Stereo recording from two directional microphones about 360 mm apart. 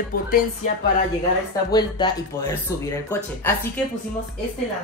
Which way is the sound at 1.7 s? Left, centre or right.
Centre.